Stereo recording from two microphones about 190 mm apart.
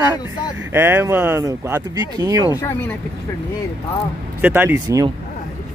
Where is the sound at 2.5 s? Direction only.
15° left (ahead or behind).